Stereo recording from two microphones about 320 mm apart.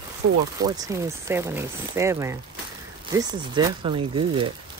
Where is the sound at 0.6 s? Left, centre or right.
Centre.